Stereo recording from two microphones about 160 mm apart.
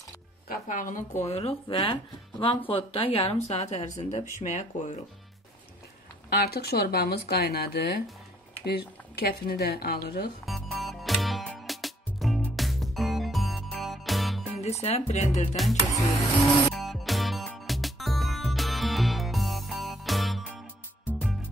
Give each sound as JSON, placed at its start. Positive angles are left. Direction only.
{"t": 0.5, "sound": "a woman's voice", "side_deg": 55}
{"t": 6.3, "sound": "speech", "side_deg": 80}
{"t": 10.4, "sound": "music", "side_deg": 0}
{"t": 14.6, "sound": "a woman's voice", "side_deg": 40}
{"t": 16.7, "sound": "music", "side_deg": 0}